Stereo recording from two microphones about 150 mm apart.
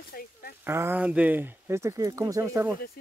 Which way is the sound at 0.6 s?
15° right (ahead or behind).